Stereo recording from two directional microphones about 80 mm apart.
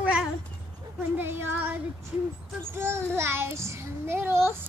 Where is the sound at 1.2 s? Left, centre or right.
Right.